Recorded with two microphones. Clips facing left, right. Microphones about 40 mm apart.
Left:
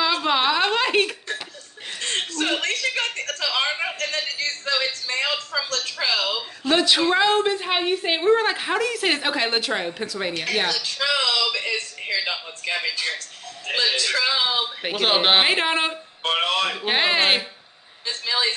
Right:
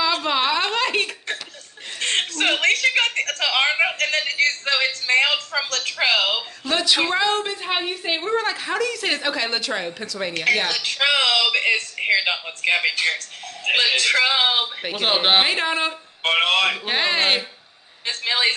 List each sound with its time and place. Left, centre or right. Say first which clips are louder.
0.0 s a sound: even; centre
2.0 s chuckle: right 3 dB; right
6.6 s a woman's voice: left 2 dB; centre
10.7 s a sound: right 3 dB; right
15.0 s a woman's voice: even; centre
15.4 s a woman's voice: left 1 dB; centre
16.2 s music: right 4 dB; right
16.8 s a woman's voice: left 1 dB; centre
18.0 s a sound: right 3 dB; right